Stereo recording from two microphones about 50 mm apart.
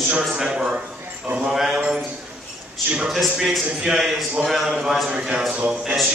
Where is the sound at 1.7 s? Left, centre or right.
Centre.